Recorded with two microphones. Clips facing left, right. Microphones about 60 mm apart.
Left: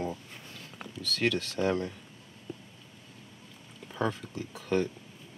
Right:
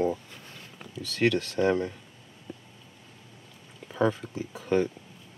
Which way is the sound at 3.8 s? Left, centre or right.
Centre.